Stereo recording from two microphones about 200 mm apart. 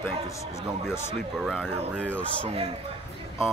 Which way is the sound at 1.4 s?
5° right (ahead or behind).